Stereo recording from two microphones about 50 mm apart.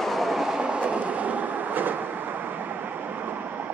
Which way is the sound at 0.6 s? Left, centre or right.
Right.